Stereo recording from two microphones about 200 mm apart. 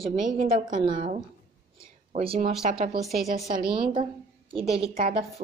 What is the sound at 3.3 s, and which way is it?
Speech, 50° right (ahead or behind).